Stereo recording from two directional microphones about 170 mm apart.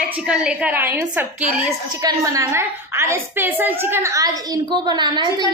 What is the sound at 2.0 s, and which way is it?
A woman's voice, 20° right (ahead or behind).